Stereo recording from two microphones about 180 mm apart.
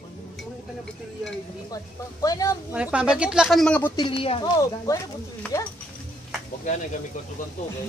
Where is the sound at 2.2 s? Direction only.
20° left (ahead or behind).